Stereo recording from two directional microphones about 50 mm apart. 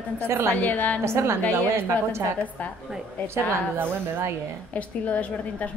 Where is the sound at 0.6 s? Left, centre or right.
Left.